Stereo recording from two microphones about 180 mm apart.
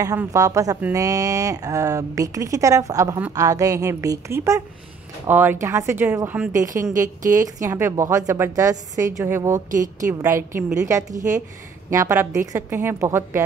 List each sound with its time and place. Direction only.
0.0 s speech: 15° right (ahead or behind)
9.7 s a woman's voice: 50° right (ahead or behind)
10.0 s speech: 15° right (ahead or behind)